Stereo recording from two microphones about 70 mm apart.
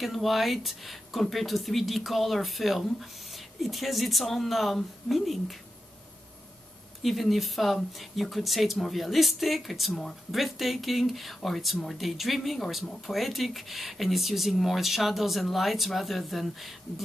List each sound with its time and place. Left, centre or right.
0.0 s speech: centre
7.0 s speech: centre